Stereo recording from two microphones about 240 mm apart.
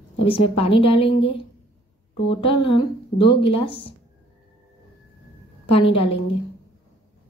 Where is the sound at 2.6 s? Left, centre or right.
Left.